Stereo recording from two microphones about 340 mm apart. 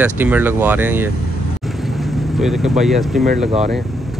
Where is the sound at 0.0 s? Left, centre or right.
Centre.